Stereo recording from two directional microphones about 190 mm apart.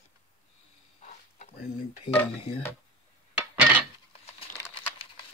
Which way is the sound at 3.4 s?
5° right (ahead or behind).